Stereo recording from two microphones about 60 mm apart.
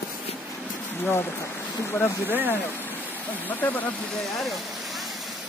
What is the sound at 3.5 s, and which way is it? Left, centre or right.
Speech, left.